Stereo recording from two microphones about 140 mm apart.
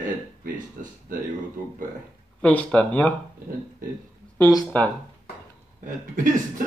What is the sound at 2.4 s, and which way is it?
Speech, 10° left (ahead or behind).